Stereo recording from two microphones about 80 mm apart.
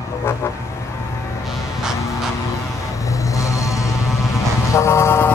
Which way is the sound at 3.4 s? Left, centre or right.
Left.